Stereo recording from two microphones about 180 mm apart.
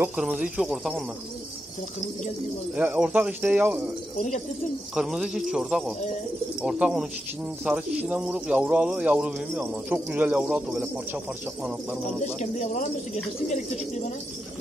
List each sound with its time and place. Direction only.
0.1 s speech: 5° right (ahead or behind)
2.7 s speech: 5° right (ahead or behind)
4.9 s speech: centre (ahead or behind)
12.4 s speech: 40° left (ahead or behind)